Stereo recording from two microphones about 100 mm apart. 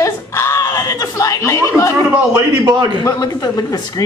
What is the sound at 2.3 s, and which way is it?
Speech, 40° right (ahead or behind).